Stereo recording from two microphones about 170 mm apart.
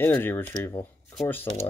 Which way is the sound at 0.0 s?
10° left (ahead or behind).